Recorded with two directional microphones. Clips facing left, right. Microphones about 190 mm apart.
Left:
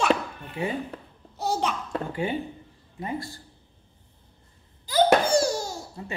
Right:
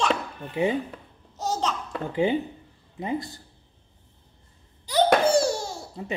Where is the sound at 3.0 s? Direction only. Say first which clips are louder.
Right 3 dB; 20° right (ahead or behind).